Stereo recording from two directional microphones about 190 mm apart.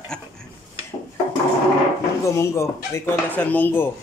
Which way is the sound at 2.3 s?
15° left (ahead or behind).